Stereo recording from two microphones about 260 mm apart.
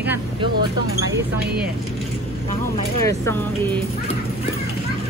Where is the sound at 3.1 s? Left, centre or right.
Centre.